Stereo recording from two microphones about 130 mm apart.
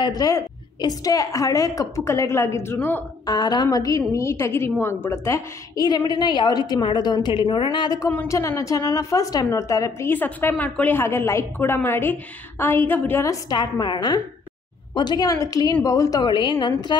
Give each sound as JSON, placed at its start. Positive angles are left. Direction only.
{"t": 0.0, "sound": "a woman's voice", "side_deg": 30}
{"t": 3.3, "sound": "a woman's voice", "side_deg": 30}
{"t": 13.2, "sound": "a woman's voice", "side_deg": 30}